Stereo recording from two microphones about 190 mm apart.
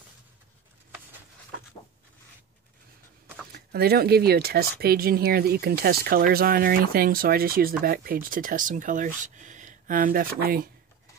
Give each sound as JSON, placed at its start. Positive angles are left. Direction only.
{"t": 3.5, "sound": "speech", "side_deg": -55}